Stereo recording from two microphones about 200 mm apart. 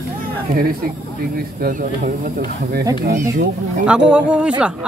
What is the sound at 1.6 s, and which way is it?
Speech, 45° right (ahead or behind).